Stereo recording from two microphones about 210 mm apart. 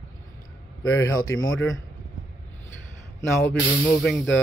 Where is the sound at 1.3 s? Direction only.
70° left (ahead or behind).